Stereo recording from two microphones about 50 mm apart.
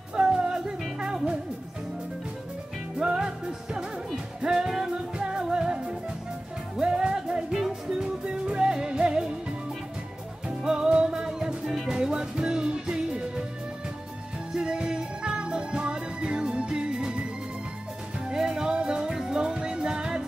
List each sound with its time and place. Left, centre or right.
0.1 s music: centre
3.0 s music: centre
10.6 s music: centre
14.5 s music: centre